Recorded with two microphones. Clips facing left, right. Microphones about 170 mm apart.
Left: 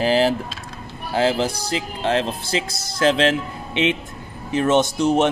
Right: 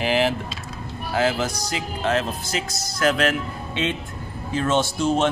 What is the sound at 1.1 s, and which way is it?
Speech, 30° left (ahead or behind).